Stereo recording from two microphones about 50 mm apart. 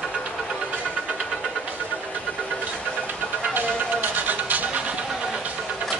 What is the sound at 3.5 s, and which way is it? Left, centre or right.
Music, right.